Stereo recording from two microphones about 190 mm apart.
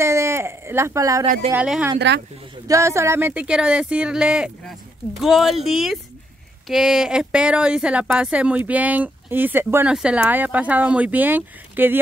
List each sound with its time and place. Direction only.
0.0 s a sound: 15° right (ahead or behind)
1.2 s speech: 40° right (ahead or behind)
1.5 s speech: 5° right (ahead or behind)
2.0 s speech: 65° right (ahead or behind)
2.7 s speech: 15° right (ahead or behind)